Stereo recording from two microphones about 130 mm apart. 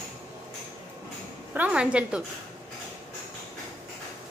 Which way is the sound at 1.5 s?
10° right (ahead or behind).